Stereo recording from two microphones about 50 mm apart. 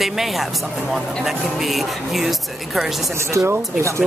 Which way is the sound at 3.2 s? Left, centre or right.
Right.